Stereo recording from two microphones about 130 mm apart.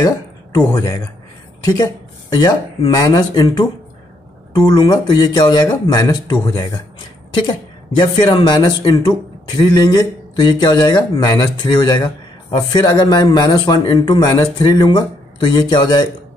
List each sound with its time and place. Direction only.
0.0 s speech: 30° left (ahead or behind)
4.6 s a man's voice: 30° left (ahead or behind)